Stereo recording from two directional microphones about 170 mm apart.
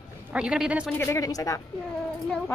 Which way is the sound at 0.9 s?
15° left (ahead or behind).